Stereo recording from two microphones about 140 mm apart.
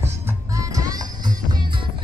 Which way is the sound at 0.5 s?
25° right (ahead or behind).